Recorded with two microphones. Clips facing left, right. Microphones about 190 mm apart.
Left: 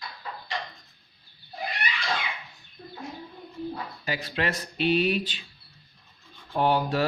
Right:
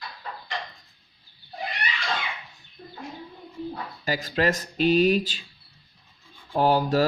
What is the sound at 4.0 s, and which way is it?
Speech, 45° right (ahead or behind).